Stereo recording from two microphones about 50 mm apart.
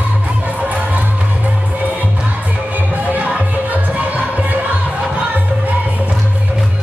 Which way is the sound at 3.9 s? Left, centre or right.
Right.